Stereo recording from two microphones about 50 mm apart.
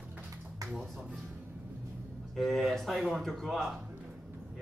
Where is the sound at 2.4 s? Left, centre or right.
Centre.